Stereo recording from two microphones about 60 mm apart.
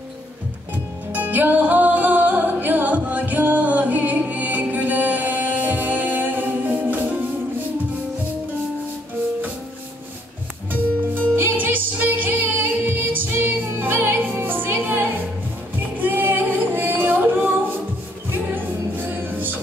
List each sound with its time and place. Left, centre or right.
1.1 s music: right
11.3 s music: right